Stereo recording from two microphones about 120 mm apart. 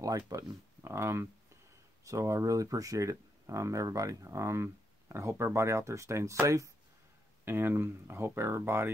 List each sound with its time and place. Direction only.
0.3 s speech: 25° right (ahead or behind)